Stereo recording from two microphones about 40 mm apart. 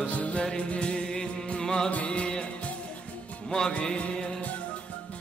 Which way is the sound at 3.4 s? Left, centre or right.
Centre.